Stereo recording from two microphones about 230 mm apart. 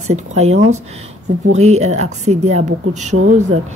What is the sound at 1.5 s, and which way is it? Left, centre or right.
A woman's voice, right.